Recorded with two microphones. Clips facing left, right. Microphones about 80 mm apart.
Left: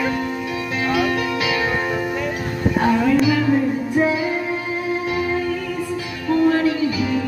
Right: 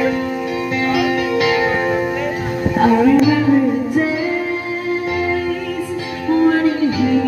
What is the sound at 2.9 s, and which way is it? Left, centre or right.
Music, centre.